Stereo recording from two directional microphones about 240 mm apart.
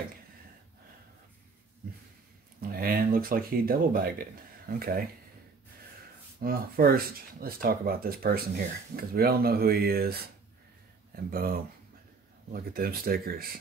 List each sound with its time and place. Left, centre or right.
2.6 s speech: right
6.4 s speech: right